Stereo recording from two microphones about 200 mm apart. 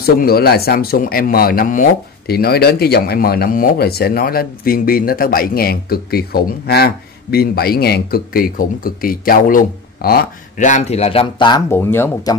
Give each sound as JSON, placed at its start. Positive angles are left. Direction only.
{"t": 0.0, "sound": "speech", "side_deg": 50}
{"t": 11.7, "sound": "speech", "side_deg": 10}